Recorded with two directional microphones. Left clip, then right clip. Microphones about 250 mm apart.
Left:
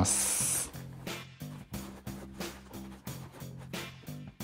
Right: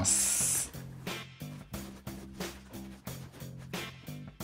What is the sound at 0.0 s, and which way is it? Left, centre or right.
Spray, left.